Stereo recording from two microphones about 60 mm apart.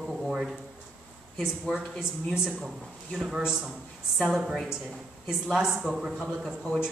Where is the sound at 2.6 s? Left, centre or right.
Centre.